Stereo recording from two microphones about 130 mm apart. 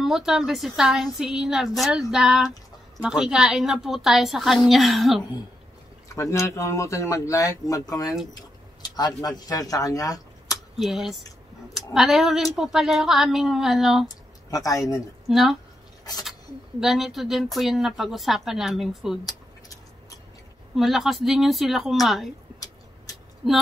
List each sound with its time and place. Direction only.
0.0 s speech: 5° right (ahead or behind)
6.0 s a man's voice: 25° left (ahead or behind)
10.8 s speech: centre (ahead or behind)
14.0 s speech: 30° left (ahead or behind)
15.2 s speech: centre (ahead or behind)
16.8 s speech: centre (ahead or behind)
19.2 s a sound: 25° left (ahead or behind)
20.7 s speech: centre (ahead or behind)
23.4 s speech: centre (ahead or behind)